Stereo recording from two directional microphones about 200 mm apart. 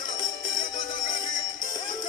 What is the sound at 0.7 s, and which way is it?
Music, 40° left (ahead or behind).